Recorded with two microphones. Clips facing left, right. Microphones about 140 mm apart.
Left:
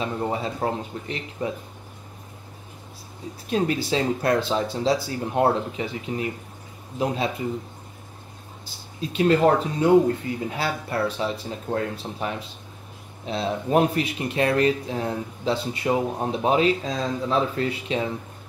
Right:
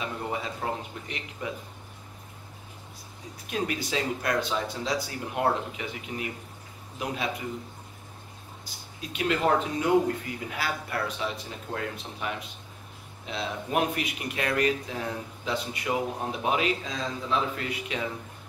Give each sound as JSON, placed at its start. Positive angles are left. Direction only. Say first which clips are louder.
{"t": 0.0, "sound": "speech", "louder": "left 6 dB", "side_deg": 35}
{"t": 3.4, "sound": "speech", "louder": "left 7 dB", "side_deg": 30}
{"t": 8.6, "sound": "speech", "louder": "left 9 dB", "side_deg": 30}